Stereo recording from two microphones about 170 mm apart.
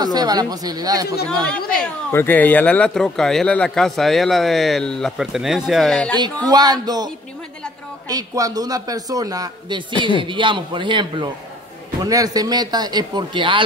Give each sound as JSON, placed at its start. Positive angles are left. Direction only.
{"t": 0.0, "sound": "a man's voice", "side_deg": -25}
{"t": 1.3, "sound": "speech", "side_deg": 5}
{"t": 6.5, "sound": "a man's voice", "side_deg": -25}
{"t": 8.1, "sound": "a man's voice", "side_deg": -20}